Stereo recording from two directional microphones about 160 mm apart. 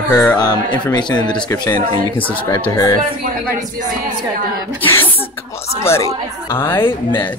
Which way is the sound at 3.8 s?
55° right (ahead or behind).